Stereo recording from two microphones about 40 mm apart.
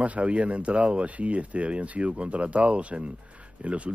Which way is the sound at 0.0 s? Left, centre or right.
Right.